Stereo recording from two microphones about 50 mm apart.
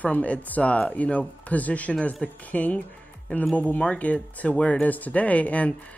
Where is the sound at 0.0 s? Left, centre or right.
Left.